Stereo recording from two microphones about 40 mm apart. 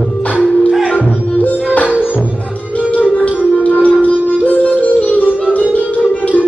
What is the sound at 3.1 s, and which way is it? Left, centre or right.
Music, left.